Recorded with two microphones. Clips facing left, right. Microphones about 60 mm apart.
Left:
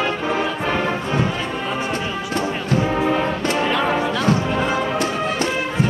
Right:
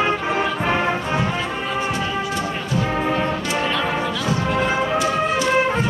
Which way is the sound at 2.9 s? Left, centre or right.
Centre.